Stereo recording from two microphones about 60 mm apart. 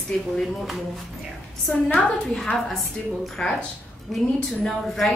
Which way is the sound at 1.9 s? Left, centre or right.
Left.